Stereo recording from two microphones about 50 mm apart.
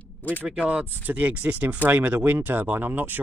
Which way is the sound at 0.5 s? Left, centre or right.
Right.